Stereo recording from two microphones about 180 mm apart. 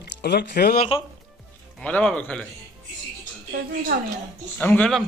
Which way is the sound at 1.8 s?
5° left (ahead or behind).